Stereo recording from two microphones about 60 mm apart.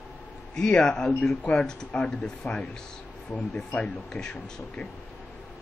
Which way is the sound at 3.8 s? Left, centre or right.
Centre.